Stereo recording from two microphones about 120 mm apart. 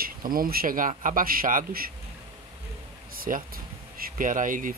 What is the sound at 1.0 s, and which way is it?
Speech, 90° right.